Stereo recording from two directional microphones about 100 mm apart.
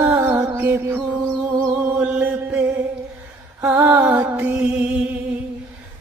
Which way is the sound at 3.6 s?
20° right (ahead or behind).